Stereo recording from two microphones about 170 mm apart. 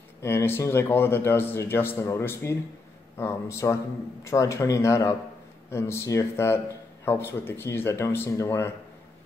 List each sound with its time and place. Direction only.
0.2 s a man's voice: 15° left (ahead or behind)